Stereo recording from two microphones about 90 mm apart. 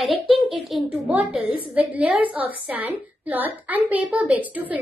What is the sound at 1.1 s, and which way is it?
A woman's voice, 15° right (ahead or behind).